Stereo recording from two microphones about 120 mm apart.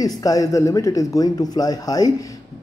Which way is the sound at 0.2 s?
30° left (ahead or behind).